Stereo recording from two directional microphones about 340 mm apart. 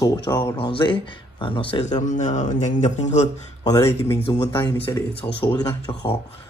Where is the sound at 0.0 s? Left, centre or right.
Centre.